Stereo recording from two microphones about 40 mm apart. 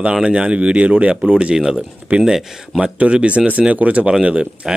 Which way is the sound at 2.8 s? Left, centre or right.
Right.